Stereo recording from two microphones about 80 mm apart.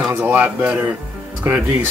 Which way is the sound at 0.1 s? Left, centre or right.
Right.